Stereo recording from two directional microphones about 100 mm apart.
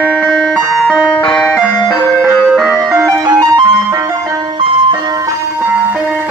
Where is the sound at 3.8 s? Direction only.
30° right (ahead or behind).